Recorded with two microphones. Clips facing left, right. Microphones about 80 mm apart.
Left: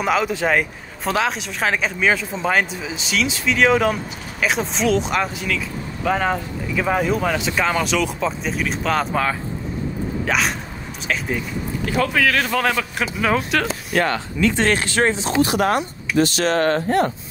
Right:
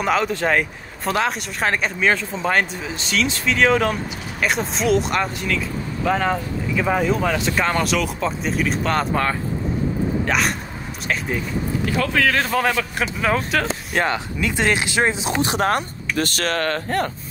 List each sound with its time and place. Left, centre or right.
0.0 s speech: centre
12.1 s speech: centre
13.9 s speech: centre
15.5 s speech: right
16.2 s speech: right
16.5 s speech: left